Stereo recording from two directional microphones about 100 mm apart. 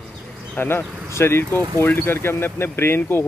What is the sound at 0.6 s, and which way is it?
Speech, 20° left (ahead or behind).